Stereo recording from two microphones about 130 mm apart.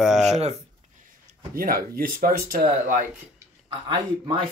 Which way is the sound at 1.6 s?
90° right.